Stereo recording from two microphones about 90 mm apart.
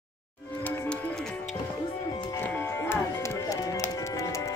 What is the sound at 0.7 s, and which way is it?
Music, 15° left (ahead or behind).